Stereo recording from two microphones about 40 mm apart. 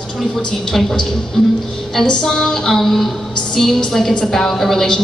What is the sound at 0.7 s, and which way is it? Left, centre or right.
A woman's voice, centre.